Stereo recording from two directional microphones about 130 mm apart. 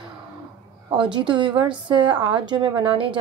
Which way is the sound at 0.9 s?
40° right (ahead or behind).